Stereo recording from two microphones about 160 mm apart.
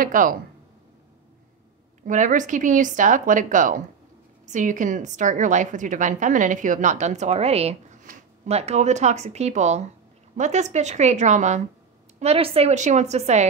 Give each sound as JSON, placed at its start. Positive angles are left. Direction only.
{"t": 0.0, "sound": "speech", "side_deg": -60}
{"t": 2.0, "sound": "a woman's voice", "side_deg": -55}